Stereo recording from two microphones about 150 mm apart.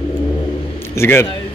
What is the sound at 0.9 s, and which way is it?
Speech, 15° left (ahead or behind).